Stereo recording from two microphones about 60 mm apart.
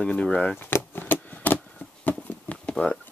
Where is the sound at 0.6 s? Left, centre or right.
Left.